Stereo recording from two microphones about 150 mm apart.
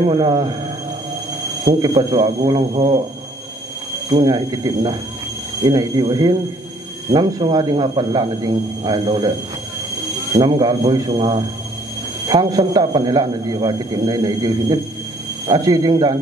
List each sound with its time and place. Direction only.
0.0 s a man's voice: 35° right (ahead or behind)
1.6 s a man's voice: 25° right (ahead or behind)
4.1 s a man's voice: 30° right (ahead or behind)
10.3 s a man's voice: 30° right (ahead or behind)